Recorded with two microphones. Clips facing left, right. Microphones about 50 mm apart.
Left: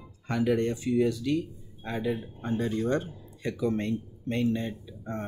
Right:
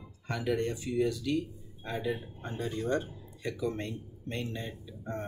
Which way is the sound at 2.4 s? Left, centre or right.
Left.